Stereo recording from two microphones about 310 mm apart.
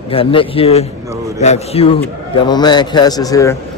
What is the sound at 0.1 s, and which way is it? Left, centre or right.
A man's voice, centre.